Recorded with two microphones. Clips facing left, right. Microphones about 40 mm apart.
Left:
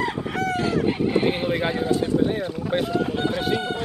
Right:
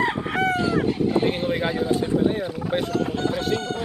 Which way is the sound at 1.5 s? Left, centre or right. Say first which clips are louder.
Even; centre.